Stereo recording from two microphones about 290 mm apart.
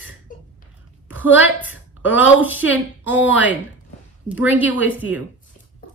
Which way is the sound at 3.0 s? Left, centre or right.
Centre.